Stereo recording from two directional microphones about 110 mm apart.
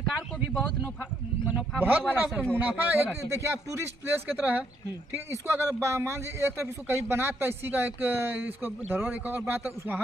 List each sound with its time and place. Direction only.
1.8 s a man's voice: 15° right (ahead or behind)
5.1 s a man's voice: 25° right (ahead or behind)